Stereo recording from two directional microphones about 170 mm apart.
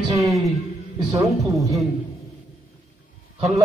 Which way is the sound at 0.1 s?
20° right (ahead or behind).